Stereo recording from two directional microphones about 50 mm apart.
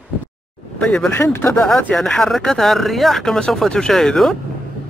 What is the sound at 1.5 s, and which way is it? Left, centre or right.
Speech, centre.